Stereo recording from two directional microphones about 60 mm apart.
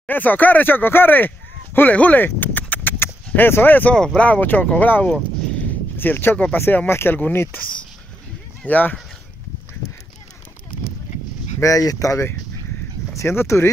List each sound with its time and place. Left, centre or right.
0.1 s speech: left
3.9 s speech: centre
4.3 s speech: left
8.6 s speech: left
11.6 s speech: left
13.2 s speech: left